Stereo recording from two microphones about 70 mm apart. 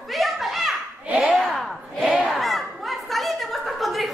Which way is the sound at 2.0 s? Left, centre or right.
Centre.